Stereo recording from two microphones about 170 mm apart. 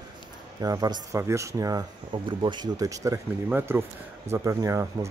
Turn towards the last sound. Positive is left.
turn(degrees=-15)  # may be behind; listen again after turning